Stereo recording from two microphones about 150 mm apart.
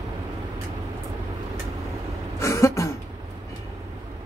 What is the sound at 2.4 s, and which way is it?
Throat clearing, 20° left (ahead or behind).